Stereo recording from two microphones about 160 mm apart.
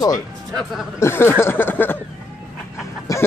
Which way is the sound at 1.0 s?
15° left (ahead or behind).